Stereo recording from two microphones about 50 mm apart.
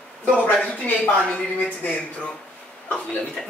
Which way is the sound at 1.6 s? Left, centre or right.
Left.